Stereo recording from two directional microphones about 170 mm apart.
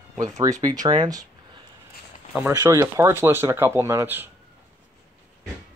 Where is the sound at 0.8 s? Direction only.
25° right (ahead or behind).